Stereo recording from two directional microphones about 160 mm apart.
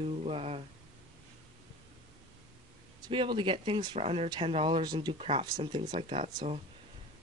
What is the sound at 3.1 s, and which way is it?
Speech, 30° right (ahead or behind).